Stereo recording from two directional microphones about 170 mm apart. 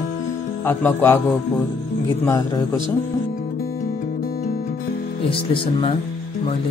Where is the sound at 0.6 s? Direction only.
10° left (ahead or behind).